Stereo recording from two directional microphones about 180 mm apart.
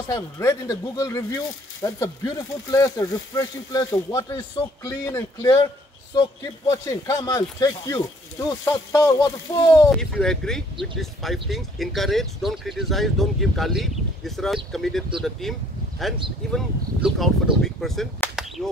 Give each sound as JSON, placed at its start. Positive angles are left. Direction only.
{"t": 0.1, "sound": "speech", "side_deg": 15}
{"t": 6.7, "sound": "speech", "side_deg": 20}
{"t": 9.9, "sound": "speech", "side_deg": 5}